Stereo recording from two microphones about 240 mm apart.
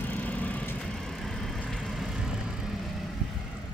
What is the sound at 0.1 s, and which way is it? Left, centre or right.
Vehicle, centre.